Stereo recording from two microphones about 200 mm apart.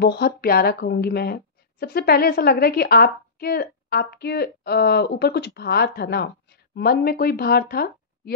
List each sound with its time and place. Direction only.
0.0 s speech: 55° left (ahead or behind)